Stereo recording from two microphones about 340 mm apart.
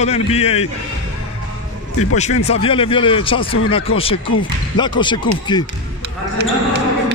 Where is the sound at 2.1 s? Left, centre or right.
Centre.